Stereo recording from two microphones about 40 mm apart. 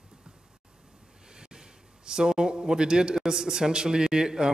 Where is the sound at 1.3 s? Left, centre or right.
Centre.